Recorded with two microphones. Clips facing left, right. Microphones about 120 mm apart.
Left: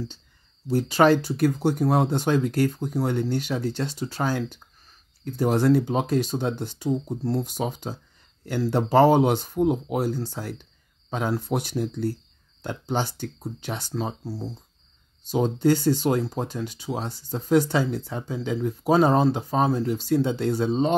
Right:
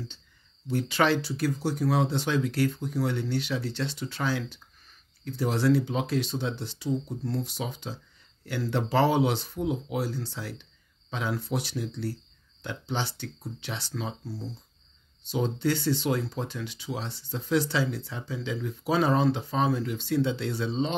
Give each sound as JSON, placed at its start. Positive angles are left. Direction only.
{"t": 0.7, "sound": "speech", "side_deg": 40}